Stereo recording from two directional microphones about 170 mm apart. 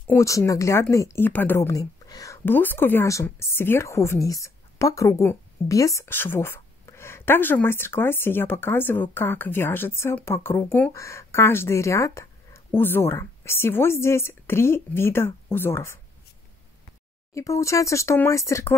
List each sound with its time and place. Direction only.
0.1 s a woman's voice: 15° left (ahead or behind)
17.3 s a woman's voice: 20° left (ahead or behind)